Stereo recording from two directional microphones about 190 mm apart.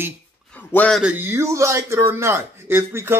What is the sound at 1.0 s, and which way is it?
Speech, 10° right (ahead or behind).